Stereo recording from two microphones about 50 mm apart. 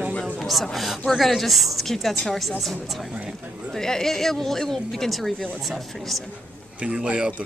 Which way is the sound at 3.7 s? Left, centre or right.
Centre.